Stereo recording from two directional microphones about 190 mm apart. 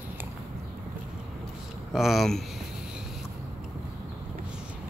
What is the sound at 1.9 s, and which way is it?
Speech, centre (ahead or behind).